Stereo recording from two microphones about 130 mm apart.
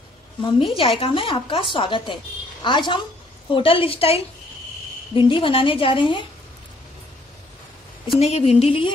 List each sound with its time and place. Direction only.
0.4 s a woman's voice: 40° left (ahead or behind)
8.1 s a woman's voice: 55° left (ahead or behind)